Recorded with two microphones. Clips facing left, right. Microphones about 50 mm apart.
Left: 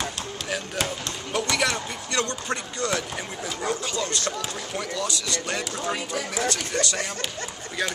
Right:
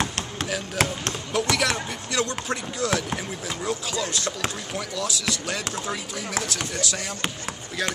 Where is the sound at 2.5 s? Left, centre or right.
Centre.